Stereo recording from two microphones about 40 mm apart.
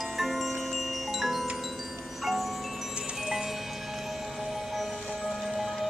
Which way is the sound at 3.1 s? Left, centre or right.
Centre.